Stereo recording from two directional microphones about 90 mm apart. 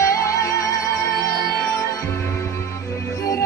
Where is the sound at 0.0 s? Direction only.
35° left (ahead or behind).